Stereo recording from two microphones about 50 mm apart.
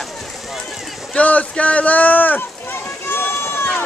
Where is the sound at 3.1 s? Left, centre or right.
Left.